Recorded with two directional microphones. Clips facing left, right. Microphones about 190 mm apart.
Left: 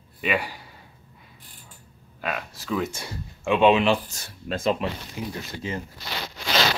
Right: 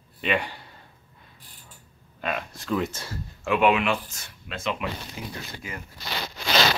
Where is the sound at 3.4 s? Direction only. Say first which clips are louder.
Left 3 dB; 25° left (ahead or behind).